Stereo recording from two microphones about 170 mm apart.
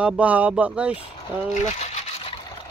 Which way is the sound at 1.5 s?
40° left (ahead or behind).